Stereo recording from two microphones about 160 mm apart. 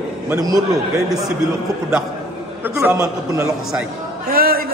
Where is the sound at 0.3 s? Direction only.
20° right (ahead or behind).